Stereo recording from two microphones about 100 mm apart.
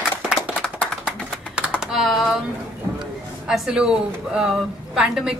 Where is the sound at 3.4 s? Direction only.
5° right (ahead or behind).